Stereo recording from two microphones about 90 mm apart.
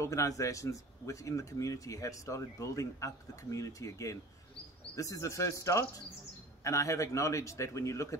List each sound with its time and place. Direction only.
0.0 s speech: 35° left (ahead or behind)